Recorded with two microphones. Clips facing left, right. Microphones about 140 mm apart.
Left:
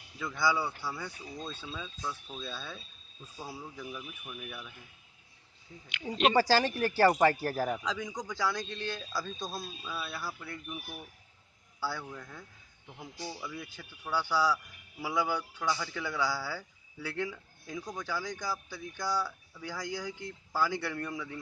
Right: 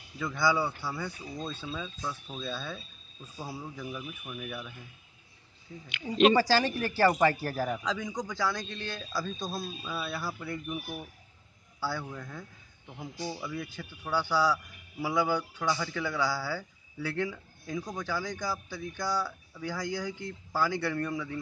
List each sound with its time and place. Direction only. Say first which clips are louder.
0.2 s a man's voice: right 3 dB; 5° left (ahead or behind)
5.9 s speech: right 1 dB; 5° right (ahead or behind)
6.3 s speech: right 1 dB; 40° left (ahead or behind)
7.8 s a man's voice: right 3 dB; 10° left (ahead or behind); by 10.8 s 5° right (ahead or behind)
11.8 s a man's voice: right 2 dB; centre (ahead or behind)
13.0 s speech: right 5 dB; 20° right (ahead or behind)
13.4 s a man's voice: right 5 dB; 5° left (ahead or behind)